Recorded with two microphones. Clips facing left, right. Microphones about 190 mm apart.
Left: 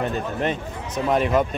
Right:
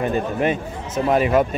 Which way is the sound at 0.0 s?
10° right (ahead or behind).